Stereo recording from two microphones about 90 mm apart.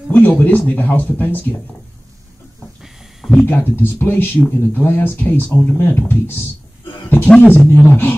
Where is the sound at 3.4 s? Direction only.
25° left (ahead or behind).